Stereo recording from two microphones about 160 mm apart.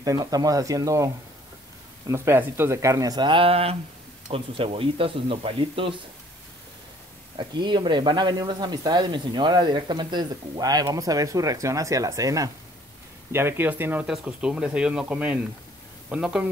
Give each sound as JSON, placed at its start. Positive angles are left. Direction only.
{"t": 0.0, "sound": "speech", "side_deg": -25}
{"t": 7.3, "sound": "speech", "side_deg": -30}